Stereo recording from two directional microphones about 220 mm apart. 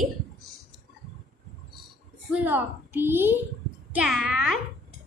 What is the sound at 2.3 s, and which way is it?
A woman's voice, 10° right (ahead or behind).